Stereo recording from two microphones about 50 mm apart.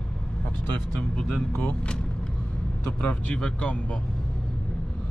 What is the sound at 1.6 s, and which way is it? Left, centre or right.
Speech, left.